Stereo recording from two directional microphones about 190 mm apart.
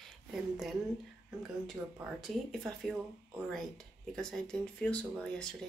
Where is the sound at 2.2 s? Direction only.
Centre (ahead or behind).